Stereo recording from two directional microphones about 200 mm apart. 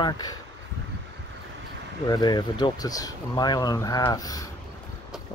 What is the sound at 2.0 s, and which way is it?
Speech, 20° left (ahead or behind).